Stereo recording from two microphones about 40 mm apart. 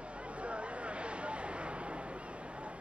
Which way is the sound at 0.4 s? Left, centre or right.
Right.